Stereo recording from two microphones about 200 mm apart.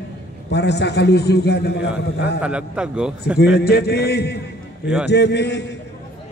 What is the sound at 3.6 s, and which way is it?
A man's voice, 55° left (ahead or behind).